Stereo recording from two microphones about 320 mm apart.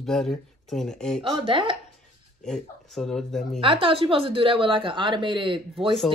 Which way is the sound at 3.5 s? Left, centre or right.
Centre.